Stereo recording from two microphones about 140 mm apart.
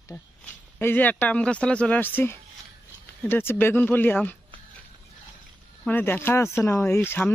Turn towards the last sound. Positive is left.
turn(degrees=15)  # may be behind; listen again after turning